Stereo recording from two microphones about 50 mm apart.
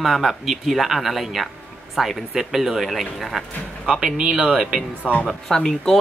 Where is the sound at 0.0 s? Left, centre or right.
Centre.